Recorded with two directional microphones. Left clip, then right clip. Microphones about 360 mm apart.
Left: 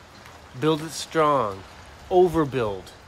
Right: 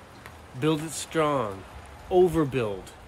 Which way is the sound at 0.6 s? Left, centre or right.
Centre.